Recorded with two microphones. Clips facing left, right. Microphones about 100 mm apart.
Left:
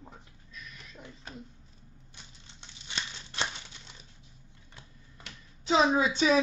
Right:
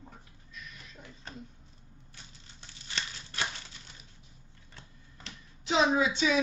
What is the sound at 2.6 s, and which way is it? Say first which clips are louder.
Crumpling: even; 20° left (ahead or behind).